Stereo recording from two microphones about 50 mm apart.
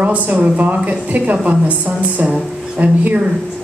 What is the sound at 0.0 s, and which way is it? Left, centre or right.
A woman's voice, right.